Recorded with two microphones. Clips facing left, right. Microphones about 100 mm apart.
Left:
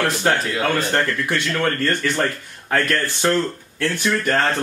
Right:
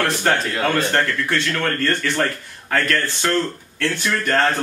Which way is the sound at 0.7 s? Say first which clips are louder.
Right 1 dB; 10° left (ahead or behind).